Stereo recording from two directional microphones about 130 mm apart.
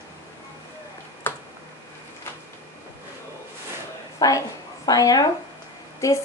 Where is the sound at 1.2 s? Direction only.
15° left (ahead or behind).